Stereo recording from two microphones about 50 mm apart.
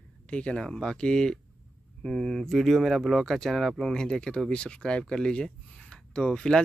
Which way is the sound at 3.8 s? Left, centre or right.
Centre.